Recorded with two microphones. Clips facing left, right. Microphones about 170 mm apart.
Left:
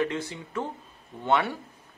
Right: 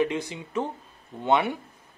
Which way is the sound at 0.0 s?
15° right (ahead or behind).